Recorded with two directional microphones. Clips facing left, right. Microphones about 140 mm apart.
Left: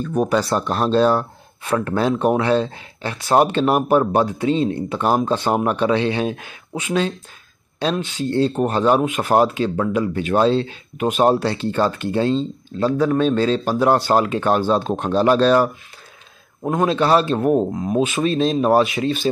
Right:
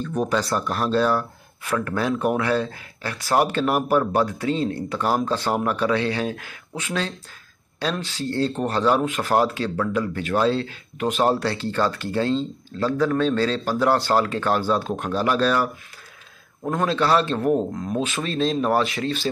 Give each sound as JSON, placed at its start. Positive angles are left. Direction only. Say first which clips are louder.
{"t": 0.3, "sound": "speech", "louder": "left 4 dB", "side_deg": 25}